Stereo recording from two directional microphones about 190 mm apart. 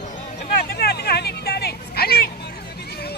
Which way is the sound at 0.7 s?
55° left (ahead or behind).